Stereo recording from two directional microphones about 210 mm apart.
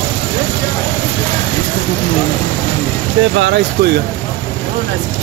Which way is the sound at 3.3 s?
65° right (ahead or behind).